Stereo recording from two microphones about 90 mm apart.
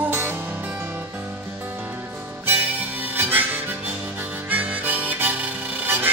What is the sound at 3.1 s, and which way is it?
Harmonica, 20° right (ahead or behind).